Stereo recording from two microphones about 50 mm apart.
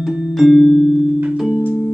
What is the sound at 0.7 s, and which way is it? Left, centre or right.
Music, centre.